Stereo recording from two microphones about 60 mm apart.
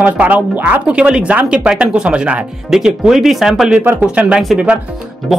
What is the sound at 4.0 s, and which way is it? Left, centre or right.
Speech, right.